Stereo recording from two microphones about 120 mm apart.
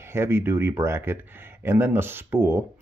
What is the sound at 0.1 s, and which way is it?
Speech, 20° right (ahead or behind).